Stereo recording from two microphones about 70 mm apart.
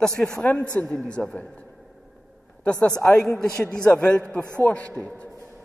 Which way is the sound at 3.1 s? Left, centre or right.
Centre.